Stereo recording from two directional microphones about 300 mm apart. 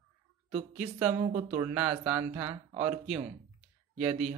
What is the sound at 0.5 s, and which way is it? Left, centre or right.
Speech, right.